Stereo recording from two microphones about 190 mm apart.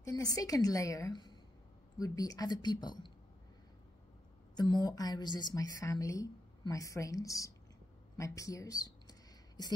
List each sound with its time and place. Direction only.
0.0 s a woman's voice: 20° left (ahead or behind)
4.6 s a woman's voice: 20° left (ahead or behind)